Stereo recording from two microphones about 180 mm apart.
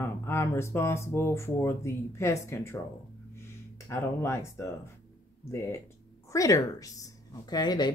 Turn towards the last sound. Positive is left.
turn(degrees=20)  # may be behind; listen again after turning